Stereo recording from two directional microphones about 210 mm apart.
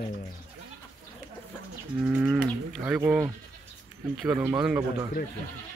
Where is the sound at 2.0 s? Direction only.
5° right (ahead or behind).